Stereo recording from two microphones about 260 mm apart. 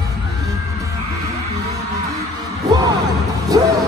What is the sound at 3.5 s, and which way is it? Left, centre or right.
Speech, centre.